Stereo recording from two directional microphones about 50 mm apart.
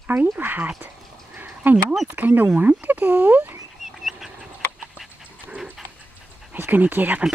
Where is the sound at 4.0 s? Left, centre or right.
Centre.